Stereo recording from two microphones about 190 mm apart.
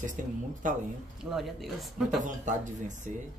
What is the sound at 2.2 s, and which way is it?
Speech, 40° right (ahead or behind).